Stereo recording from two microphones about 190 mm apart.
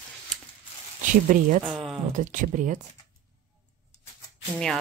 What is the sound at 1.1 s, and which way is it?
Speech, 45° right (ahead or behind).